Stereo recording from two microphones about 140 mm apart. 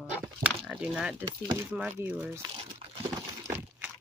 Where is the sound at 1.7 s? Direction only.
10° right (ahead or behind).